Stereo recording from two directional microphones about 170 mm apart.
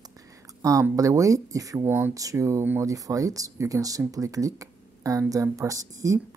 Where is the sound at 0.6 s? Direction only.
20° right (ahead or behind).